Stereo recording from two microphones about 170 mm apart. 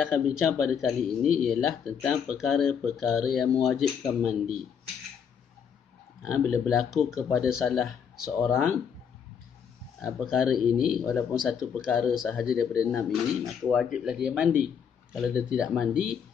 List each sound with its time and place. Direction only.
0.0 s speech: 5° right (ahead or behind)
6.3 s speech: centre (ahead or behind)
10.3 s speech: centre (ahead or behind)